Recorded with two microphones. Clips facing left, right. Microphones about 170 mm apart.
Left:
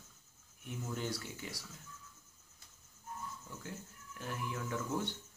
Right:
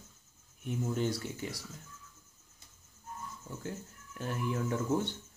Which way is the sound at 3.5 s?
30° right (ahead or behind).